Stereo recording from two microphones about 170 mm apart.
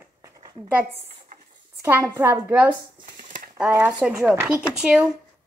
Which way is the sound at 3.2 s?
50° right (ahead or behind).